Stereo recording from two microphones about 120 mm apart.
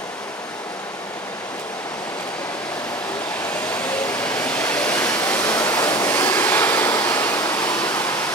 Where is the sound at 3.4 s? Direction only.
15° left (ahead or behind).